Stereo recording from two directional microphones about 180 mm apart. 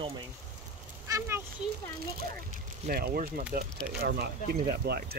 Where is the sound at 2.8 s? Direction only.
55° right (ahead or behind).